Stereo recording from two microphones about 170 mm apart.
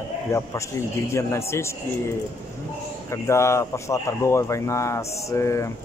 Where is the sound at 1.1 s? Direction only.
15° left (ahead or behind).